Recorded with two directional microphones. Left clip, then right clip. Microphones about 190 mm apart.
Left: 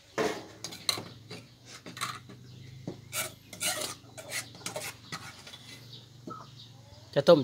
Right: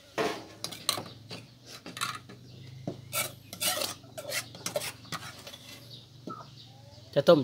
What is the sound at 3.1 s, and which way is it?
Filing, 20° right (ahead or behind).